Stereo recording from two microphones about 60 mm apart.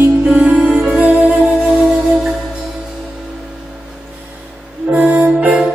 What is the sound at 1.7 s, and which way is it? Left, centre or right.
Music, centre.